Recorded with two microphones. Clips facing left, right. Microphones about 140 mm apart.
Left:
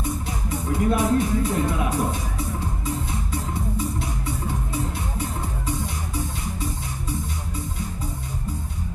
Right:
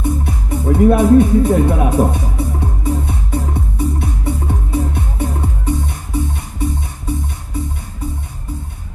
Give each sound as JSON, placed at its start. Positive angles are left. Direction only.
{"t": 0.0, "sound": "music", "side_deg": -60}